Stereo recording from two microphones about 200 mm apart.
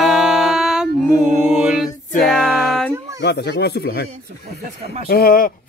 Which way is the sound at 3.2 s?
55° left (ahead or behind).